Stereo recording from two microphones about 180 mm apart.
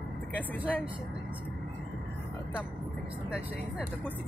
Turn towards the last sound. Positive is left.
turn(degrees=-5)  # may be behind; listen again after turning